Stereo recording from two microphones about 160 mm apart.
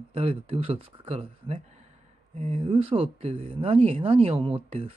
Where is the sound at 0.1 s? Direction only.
35° right (ahead or behind).